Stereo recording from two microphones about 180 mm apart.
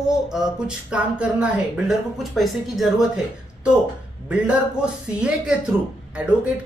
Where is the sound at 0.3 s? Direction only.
5° right (ahead or behind).